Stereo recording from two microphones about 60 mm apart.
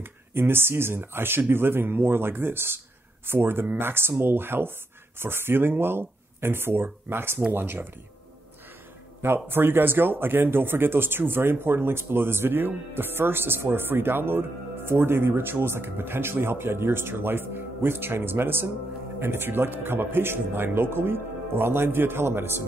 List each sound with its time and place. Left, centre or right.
0.0 s speech: right
9.2 s speech: right